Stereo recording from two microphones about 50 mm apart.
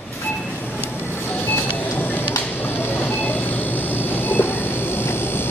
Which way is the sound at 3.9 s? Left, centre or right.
Left.